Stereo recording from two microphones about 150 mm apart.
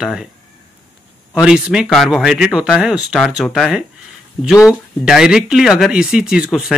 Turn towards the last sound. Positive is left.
turn(degrees=-5)  # may be behind; listen again after turning